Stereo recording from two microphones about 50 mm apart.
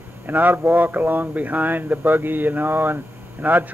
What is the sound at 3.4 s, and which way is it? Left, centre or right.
Speech, right.